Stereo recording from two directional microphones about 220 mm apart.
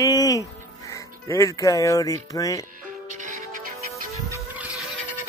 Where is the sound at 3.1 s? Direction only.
35° right (ahead or behind).